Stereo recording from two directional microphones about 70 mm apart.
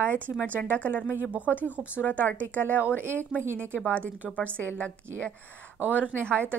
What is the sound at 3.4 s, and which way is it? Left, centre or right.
Speech, right.